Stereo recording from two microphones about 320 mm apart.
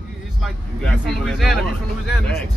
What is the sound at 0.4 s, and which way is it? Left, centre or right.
Speech, centre.